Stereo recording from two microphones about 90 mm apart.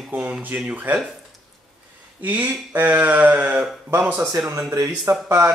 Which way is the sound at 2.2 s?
20° right (ahead or behind).